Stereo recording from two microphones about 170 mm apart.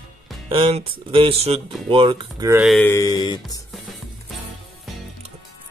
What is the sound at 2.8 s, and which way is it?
Speech, 15° left (ahead or behind).